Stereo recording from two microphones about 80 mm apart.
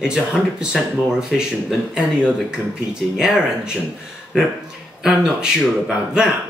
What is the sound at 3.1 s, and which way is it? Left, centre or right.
Speech, centre.